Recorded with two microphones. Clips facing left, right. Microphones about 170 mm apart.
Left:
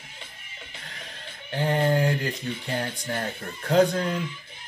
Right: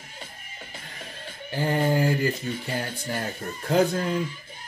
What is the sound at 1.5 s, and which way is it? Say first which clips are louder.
Mantra: even; 5° right (ahead or behind).